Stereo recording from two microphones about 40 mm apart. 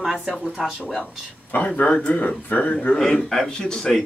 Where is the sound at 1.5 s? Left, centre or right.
Left.